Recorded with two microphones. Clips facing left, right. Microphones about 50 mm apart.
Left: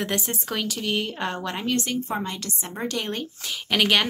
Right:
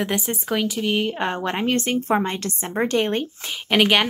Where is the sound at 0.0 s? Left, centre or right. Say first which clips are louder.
Right 3 dB; centre.